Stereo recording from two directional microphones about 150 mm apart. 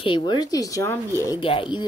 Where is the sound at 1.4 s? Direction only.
35° left (ahead or behind).